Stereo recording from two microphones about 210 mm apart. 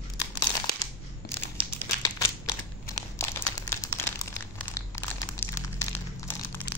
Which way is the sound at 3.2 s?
10° left (ahead or behind).